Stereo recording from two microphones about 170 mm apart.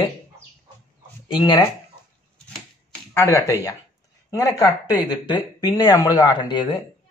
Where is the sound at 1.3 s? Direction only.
25° left (ahead or behind).